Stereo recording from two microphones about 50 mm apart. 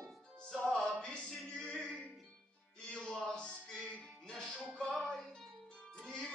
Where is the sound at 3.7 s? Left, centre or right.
Centre.